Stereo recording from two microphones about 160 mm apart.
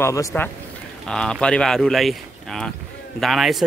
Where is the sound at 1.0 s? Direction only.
5° left (ahead or behind).